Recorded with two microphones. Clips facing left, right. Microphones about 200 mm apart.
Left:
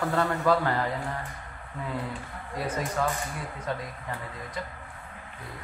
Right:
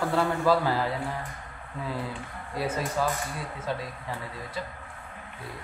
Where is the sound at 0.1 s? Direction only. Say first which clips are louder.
Right 1 dB; 10° right (ahead or behind).